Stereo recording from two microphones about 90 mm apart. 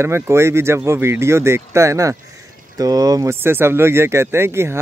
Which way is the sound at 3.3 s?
25° right (ahead or behind).